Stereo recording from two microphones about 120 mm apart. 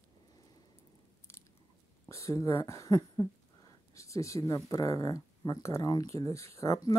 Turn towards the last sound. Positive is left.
turn(degrees=25)  # may be behind; listen again after turning